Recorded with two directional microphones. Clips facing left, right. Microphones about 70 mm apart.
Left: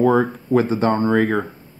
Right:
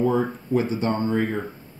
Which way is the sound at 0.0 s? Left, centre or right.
Left.